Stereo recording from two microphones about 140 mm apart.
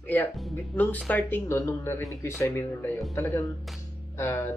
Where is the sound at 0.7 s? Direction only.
10° left (ahead or behind).